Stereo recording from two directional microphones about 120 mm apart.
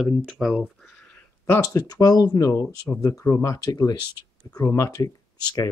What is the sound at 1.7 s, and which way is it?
Speech, 35° left (ahead or behind).